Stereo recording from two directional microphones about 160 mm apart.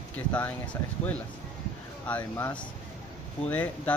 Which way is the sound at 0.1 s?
10° left (ahead or behind).